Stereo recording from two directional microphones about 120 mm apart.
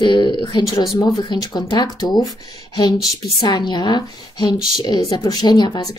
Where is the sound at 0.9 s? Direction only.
30° left (ahead or behind).